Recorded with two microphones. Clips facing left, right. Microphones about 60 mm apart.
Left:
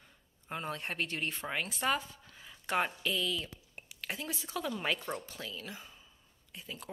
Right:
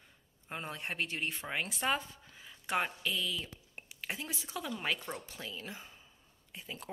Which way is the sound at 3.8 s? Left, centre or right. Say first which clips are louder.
Even; centre.